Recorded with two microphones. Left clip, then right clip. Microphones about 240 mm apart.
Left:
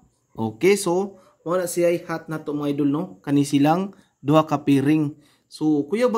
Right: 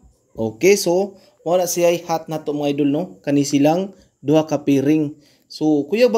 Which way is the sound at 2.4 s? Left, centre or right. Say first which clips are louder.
Right 3 dB; centre.